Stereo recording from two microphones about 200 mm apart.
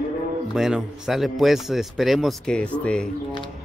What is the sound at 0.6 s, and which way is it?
Speech, centre (ahead or behind).